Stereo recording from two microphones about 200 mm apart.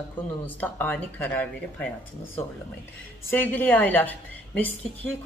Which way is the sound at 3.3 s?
10° left (ahead or behind).